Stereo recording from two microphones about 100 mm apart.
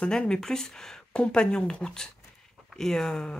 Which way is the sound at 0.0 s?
10° left (ahead or behind).